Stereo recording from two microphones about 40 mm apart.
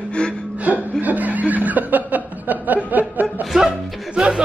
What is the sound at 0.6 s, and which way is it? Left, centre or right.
Chuckle, right.